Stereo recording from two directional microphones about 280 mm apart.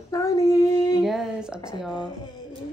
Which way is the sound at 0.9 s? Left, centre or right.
Centre.